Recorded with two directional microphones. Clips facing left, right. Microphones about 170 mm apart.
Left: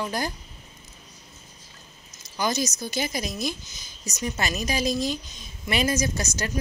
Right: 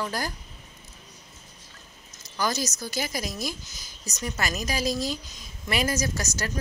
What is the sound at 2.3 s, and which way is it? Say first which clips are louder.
A woman's voice: left 2 dB; 20° left (ahead or behind).